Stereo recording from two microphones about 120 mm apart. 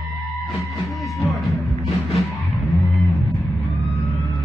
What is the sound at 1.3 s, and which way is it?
Music, centre (ahead or behind).